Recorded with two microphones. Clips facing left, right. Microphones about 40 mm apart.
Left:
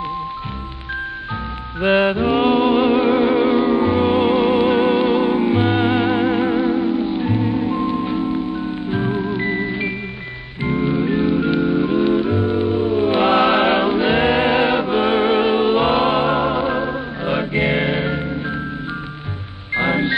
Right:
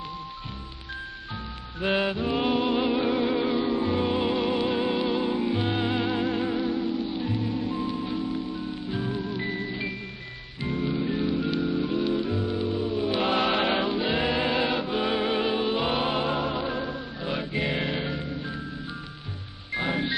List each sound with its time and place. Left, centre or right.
1.8 s music: left
19.7 s music: left